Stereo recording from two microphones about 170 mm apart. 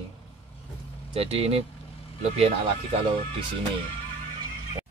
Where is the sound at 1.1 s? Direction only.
35° right (ahead or behind).